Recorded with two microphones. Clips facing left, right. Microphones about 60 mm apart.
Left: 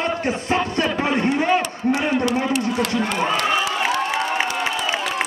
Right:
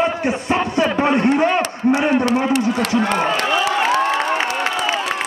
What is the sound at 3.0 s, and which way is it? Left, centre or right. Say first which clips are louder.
Speech: right 3 dB; right.